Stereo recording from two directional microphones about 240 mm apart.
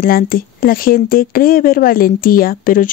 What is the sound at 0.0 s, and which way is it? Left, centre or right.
Speech, left.